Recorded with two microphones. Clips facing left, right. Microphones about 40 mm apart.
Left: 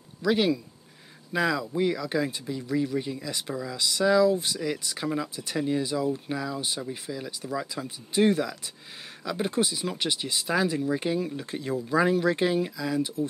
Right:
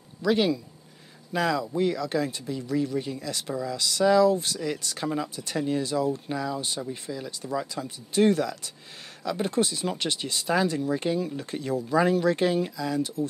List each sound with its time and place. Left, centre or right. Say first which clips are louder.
0.3 s speech: even; centre